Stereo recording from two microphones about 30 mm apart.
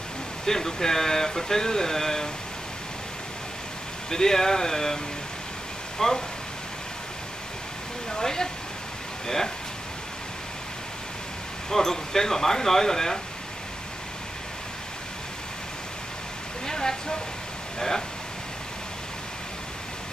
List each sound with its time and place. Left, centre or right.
0.5 s speech: centre
4.1 s speech: centre
8.1 s speech: centre
11.7 s speech: centre
16.6 s speech: left